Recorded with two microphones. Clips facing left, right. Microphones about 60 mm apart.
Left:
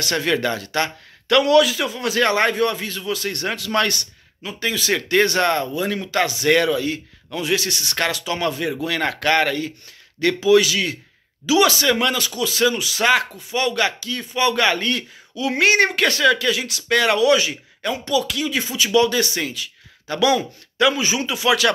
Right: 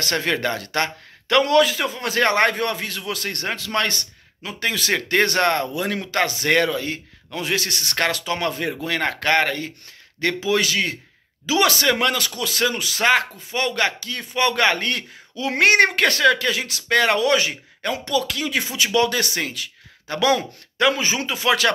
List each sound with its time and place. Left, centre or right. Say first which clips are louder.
0.0 s speech: left 2 dB; right
3.4 s speech: left 2 dB; right
4.4 s speech: even; right
5.8 s speech: left 1 dB; right
6.1 s speech: left 2 dB; right